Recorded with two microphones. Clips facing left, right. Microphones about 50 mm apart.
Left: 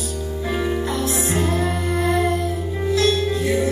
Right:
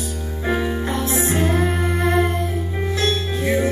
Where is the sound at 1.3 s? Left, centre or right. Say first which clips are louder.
Right 2 dB; right.